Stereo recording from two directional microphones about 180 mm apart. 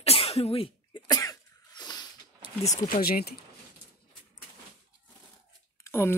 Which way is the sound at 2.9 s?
60° left (ahead or behind).